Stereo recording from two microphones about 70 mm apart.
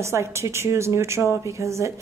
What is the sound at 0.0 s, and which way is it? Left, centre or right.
A woman's voice, right.